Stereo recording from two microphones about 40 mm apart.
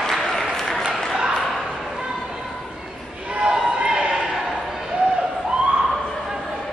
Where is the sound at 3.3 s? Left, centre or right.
Right.